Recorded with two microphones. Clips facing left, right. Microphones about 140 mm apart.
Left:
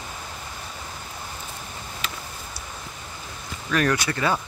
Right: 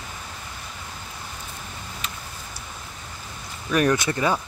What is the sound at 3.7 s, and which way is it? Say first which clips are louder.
Speech: right 2 dB; 20° right (ahead or behind).